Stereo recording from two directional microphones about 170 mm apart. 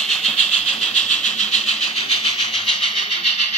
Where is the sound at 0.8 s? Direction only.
45° left (ahead or behind).